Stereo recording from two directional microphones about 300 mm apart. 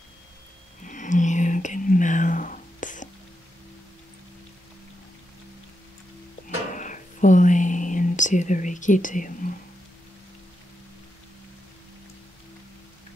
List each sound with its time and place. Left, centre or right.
0.8 s whispering: left
6.7 s whispering: left